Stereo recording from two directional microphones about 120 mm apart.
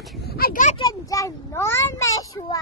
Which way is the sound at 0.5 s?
90° left.